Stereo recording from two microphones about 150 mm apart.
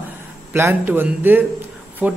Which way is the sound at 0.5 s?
15° right (ahead or behind).